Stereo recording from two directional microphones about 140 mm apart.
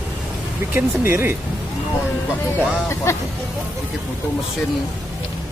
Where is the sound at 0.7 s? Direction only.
15° right (ahead or behind).